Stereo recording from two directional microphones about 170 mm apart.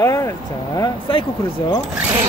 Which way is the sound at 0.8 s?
30° left (ahead or behind).